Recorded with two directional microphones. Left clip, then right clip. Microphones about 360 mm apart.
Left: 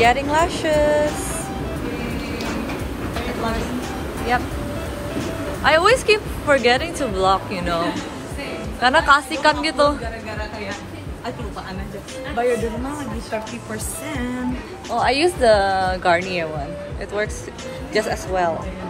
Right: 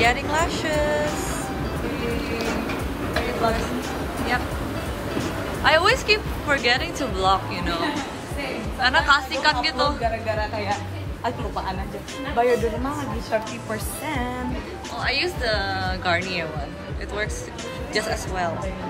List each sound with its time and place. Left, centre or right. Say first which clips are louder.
0.0 s a woman's voice: left 4 dB; centre
5.2 s a woman's voice: left 2 dB; centre
12.4 s speech: even; right
14.9 s a woman's voice: left 7 dB; centre
17.9 s a woman's voice: left 5 dB; centre